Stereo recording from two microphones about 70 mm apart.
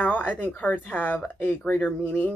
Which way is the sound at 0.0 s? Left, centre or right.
Left.